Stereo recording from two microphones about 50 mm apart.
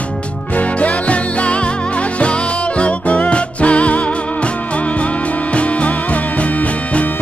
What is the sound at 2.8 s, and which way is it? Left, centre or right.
Music, left.